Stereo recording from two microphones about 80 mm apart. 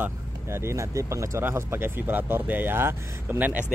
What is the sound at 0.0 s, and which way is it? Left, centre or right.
Speech, right.